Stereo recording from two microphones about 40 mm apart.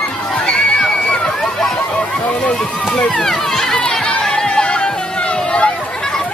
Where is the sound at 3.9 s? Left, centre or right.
Centre.